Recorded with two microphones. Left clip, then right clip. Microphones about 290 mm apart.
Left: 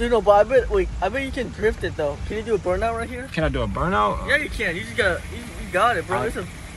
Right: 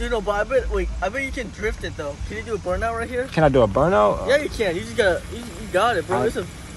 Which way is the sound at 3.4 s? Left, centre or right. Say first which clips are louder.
Right 8 dB; right.